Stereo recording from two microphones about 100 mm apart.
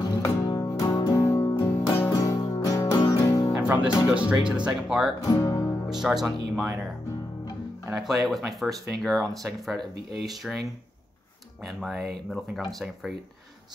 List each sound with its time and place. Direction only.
0.0 s music: 35° left (ahead or behind)
1.6 s music: 35° left (ahead or behind)
3.6 s music: 15° right (ahead or behind)
4.1 s speech: 10° right (ahead or behind)
5.2 s speech: 35° left (ahead or behind)
5.9 s speech: 5° right (ahead or behind)
8.0 s speech: centre (ahead or behind)
11.6 s speech: centre (ahead or behind)